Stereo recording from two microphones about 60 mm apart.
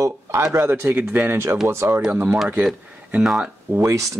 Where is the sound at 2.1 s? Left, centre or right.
Right.